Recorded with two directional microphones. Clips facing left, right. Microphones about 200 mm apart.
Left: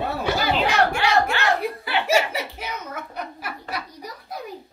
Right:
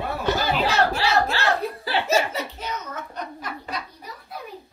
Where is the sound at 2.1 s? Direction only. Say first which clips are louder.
Left 2 dB; 15° left (ahead or behind).